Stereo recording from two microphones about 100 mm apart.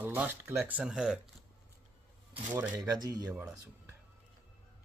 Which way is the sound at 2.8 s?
40° right (ahead or behind).